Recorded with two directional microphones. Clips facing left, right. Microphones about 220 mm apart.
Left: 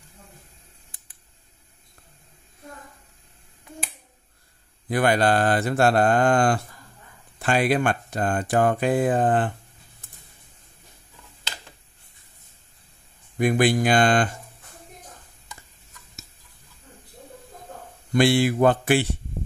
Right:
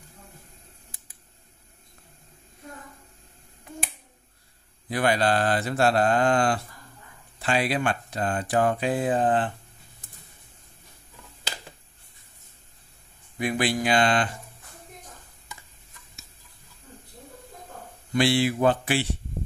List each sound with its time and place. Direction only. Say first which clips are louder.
4.8 s speech: left 3 dB; 50° left (ahead or behind)
13.4 s speech: left 6 dB; 45° left (ahead or behind)
18.1 s speech: left 3 dB; 50° left (ahead or behind)